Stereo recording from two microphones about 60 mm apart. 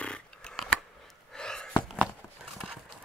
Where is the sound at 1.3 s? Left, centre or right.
Centre.